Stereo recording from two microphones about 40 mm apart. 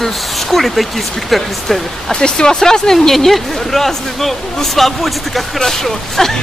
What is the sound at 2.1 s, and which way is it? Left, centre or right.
Speech, left.